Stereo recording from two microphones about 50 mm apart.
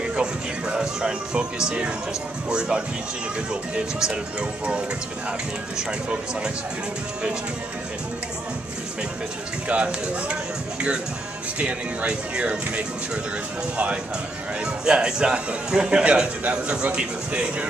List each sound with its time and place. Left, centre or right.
0.1 s a man's voice: centre
3.7 s a man's voice: centre
9.7 s speech: right
12.1 s speech: right
14.6 s a man's voice: centre